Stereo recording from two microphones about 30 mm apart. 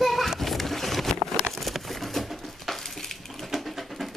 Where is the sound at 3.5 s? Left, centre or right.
Centre.